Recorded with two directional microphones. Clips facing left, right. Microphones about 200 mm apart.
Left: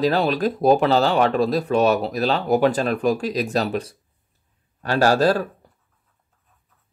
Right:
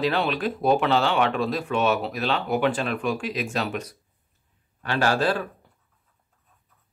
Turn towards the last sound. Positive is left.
turn(degrees=40)  # may be behind; listen again after turning